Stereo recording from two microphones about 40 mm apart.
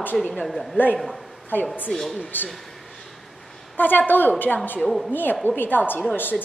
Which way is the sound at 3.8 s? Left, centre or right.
Left.